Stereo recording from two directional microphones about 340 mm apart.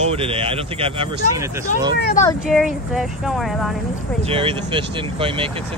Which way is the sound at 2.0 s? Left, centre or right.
Left.